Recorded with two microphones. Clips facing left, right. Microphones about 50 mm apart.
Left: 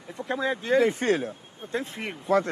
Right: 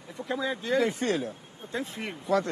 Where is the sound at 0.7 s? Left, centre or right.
Left.